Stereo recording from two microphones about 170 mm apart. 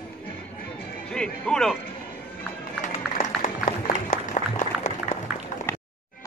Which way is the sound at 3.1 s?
50° left (ahead or behind).